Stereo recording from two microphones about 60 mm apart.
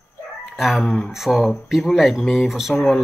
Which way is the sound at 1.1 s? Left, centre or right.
Centre.